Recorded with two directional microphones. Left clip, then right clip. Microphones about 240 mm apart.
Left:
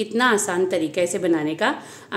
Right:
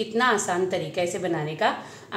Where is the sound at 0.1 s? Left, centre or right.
Left.